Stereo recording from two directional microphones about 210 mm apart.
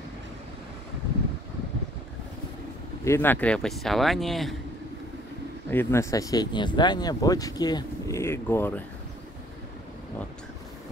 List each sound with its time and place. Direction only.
3.1 s speech: 10° left (ahead or behind)
5.7 s speech: 10° left (ahead or behind)